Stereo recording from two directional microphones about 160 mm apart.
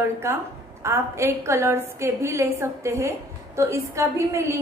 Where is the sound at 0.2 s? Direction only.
15° right (ahead or behind).